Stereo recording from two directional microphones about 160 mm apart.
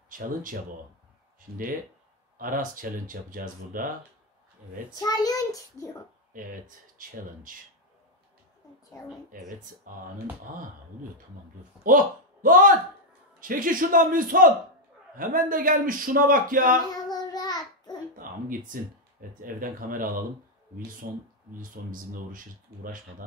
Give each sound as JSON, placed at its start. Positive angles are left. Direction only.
{"t": 2.3, "sound": "a man's voice", "side_deg": -60}
{"t": 4.9, "sound": "a child's voice", "side_deg": 25}
{"t": 6.3, "sound": "a man's voice", "side_deg": -60}
{"t": 9.3, "sound": "a man's voice", "side_deg": -60}
{"t": 11.8, "sound": "a man's voice", "side_deg": -60}
{"t": 16.9, "sound": "child singing", "side_deg": 25}
{"t": 18.1, "sound": "a man's voice", "side_deg": -60}